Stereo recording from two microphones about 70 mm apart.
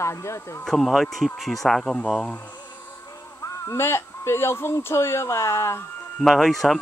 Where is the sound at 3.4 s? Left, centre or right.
Left.